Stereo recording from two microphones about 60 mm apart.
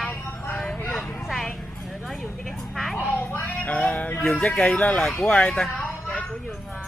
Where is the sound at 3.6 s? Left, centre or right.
Left.